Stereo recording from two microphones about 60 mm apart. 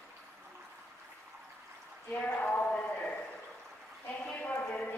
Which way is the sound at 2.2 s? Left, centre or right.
Left.